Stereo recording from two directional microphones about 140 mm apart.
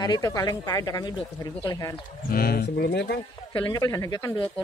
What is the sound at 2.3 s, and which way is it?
Speech, 90° left.